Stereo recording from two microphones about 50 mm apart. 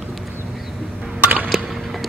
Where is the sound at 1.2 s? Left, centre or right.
Right.